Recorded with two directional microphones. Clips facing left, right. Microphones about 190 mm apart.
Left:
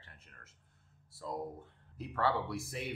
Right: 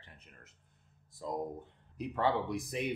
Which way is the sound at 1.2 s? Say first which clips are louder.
Right 3 dB; 20° right (ahead or behind).